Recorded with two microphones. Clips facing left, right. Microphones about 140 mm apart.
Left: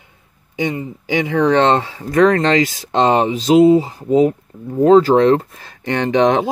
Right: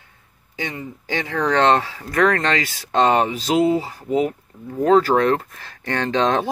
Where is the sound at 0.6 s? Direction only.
20° left (ahead or behind).